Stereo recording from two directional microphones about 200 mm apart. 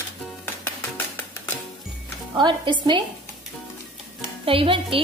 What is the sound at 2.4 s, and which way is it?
Speech, 25° right (ahead or behind).